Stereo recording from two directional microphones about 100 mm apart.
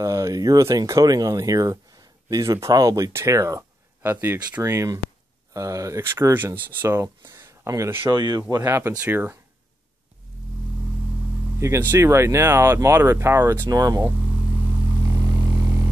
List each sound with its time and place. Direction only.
0.0 s speech: 35° right (ahead or behind)
4.1 s speech: 20° right (ahead or behind)
7.3 s a sound: 30° right (ahead or behind)
8.1 s speech: 45° right (ahead or behind)
8.6 s speech: 25° right (ahead or behind)
11.9 s speech: 25° right (ahead or behind)
13.7 s speech: 35° right (ahead or behind)